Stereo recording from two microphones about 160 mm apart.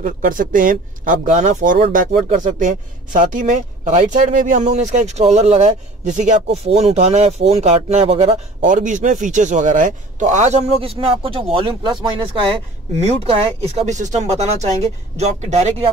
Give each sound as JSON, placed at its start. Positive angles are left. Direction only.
{"t": 0.0, "sound": "speech", "side_deg": -60}